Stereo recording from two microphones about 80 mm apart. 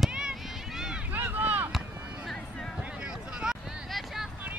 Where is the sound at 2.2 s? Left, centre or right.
Centre.